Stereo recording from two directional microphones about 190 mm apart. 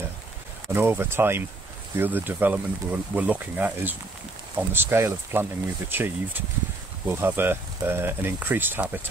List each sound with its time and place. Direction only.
0.7 s speech: 10° right (ahead or behind)